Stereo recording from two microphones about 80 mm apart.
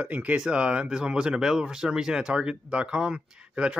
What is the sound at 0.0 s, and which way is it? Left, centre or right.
Speech, centre.